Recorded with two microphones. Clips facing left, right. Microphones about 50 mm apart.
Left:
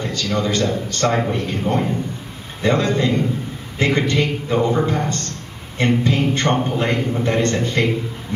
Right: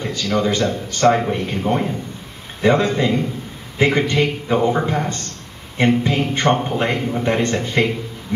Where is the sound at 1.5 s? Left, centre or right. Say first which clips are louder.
Even; centre.